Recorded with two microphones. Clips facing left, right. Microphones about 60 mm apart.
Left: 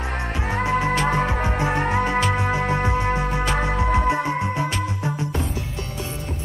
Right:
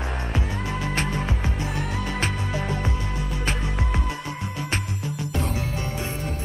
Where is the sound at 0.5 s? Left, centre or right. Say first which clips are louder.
Left 8 dB; left.